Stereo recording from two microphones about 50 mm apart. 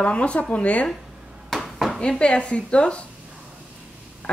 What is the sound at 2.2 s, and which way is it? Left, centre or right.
Speech, left.